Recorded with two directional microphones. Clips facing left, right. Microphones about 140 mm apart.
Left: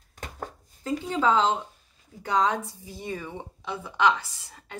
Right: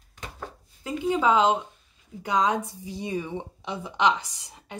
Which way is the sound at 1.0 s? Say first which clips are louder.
Right 3 dB; 15° right (ahead or behind).